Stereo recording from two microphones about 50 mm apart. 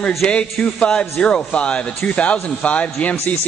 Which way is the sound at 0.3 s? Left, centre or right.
Centre.